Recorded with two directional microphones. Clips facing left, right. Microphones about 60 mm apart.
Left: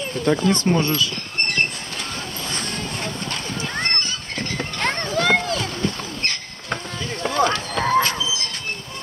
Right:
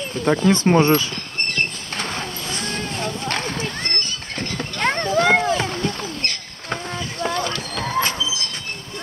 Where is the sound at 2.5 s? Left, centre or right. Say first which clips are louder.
Right 1 dB; centre.